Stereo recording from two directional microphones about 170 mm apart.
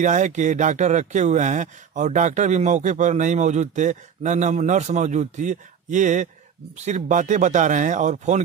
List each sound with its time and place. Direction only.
0.0 s speech: 45° right (ahead or behind)